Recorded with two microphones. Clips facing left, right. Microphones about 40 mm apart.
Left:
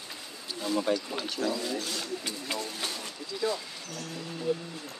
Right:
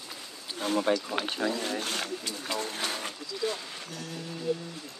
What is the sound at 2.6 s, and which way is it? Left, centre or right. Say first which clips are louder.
Vehicle: right 3 dB; right.